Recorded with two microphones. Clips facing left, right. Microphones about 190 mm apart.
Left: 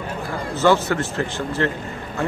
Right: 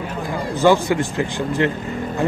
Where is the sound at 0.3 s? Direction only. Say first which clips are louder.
Right 2 dB; 15° right (ahead or behind).